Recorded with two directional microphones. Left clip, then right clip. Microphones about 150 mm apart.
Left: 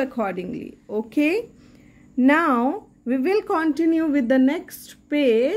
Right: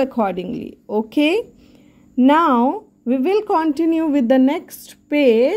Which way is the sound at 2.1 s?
35° right (ahead or behind).